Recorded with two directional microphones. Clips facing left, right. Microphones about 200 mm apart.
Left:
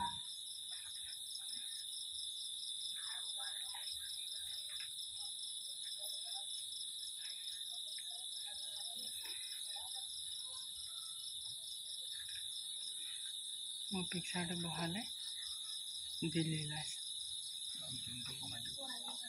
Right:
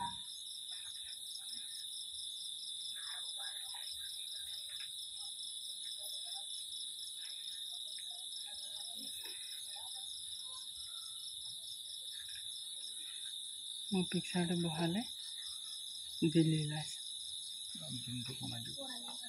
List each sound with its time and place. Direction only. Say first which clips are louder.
14.1 s speech: right 8 dB; 30° right (ahead or behind)
16.2 s speech: right 9 dB; 35° right (ahead or behind)